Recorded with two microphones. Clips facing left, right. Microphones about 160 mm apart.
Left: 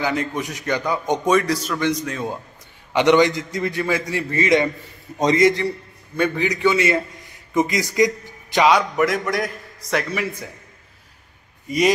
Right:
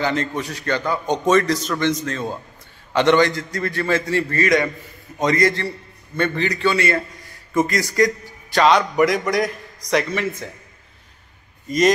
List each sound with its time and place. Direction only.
0.0 s a man's voice: 10° left (ahead or behind)